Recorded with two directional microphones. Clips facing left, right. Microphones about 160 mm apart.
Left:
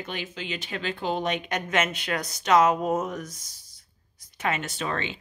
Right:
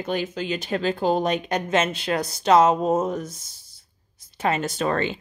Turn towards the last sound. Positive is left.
turn(degrees=-45)  # may be behind; listen again after turning